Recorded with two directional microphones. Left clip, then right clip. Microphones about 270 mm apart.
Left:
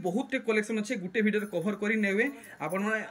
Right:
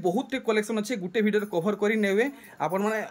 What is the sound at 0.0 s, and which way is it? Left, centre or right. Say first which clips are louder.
Speech: right 4 dB; centre.